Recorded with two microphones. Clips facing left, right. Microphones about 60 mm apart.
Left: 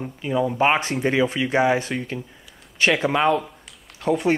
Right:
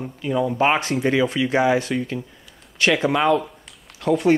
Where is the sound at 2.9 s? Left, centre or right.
Centre.